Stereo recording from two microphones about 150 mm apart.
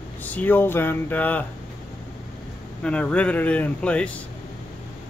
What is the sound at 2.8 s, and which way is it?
Speech, 10° left (ahead or behind).